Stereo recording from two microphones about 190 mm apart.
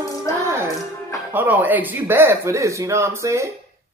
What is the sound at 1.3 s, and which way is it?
Speech, 10° right (ahead or behind).